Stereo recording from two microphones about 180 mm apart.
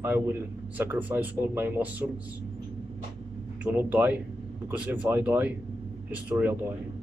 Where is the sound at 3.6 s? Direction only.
10° right (ahead or behind).